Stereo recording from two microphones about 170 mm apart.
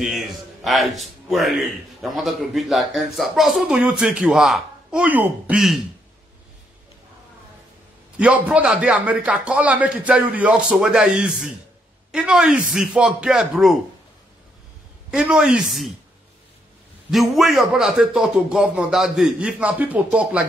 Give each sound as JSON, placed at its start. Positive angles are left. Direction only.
{"t": 0.7, "sound": "a man's voice", "side_deg": 0}
{"t": 8.2, "sound": "a man's voice", "side_deg": -5}
{"t": 15.0, "sound": "a man's voice", "side_deg": -5}
{"t": 17.1, "sound": "a man's voice", "side_deg": 0}